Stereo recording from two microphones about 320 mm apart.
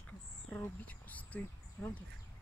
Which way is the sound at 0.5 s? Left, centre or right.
Centre.